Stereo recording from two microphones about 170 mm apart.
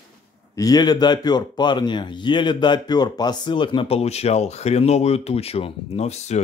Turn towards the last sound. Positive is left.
turn(degrees=40)  # may be behind; listen again after turning